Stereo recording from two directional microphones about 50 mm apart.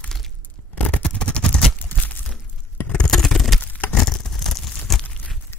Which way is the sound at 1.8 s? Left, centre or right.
Left.